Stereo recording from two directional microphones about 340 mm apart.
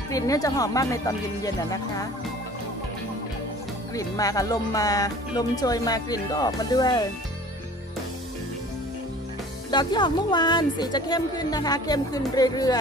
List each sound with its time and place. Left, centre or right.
0.1 s speech: centre
3.9 s speech: centre
9.7 s speech: centre